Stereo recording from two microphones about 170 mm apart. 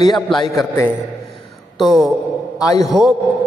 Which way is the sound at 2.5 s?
20° left (ahead or behind).